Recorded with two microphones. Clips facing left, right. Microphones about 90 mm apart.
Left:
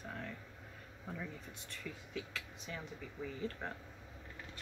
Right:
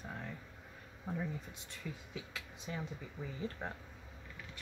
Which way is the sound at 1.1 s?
20° right (ahead or behind).